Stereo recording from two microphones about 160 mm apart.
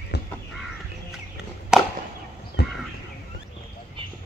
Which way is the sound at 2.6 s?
90° left.